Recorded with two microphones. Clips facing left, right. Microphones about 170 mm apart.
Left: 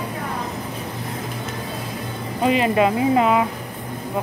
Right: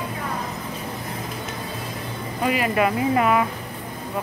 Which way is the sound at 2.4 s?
25° left (ahead or behind).